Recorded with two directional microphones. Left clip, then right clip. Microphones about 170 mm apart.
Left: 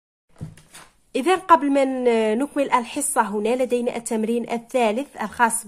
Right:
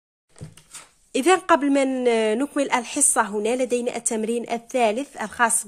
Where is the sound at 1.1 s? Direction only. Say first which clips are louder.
Left 1 dB; 25° right (ahead or behind).